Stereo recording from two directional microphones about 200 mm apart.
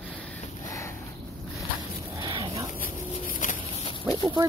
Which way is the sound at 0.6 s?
15° left (ahead or behind).